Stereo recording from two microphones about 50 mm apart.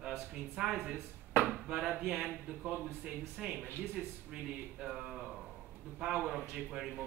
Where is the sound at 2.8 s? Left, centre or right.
Right.